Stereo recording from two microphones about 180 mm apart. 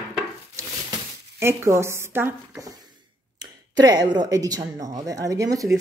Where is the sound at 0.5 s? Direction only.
15° right (ahead or behind).